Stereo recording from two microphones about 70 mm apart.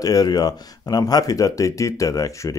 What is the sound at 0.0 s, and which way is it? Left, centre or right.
A man's voice, left.